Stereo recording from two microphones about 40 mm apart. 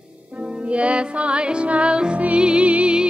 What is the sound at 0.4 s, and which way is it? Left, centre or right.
Music, right.